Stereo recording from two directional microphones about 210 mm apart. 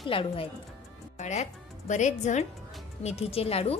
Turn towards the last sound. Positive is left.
turn(degrees=30)  # may be behind; listen again after turning